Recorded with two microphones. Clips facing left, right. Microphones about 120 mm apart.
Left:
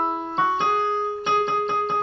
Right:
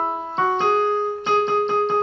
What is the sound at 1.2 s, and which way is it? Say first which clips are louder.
Music: right 3 dB; 35° right (ahead or behind).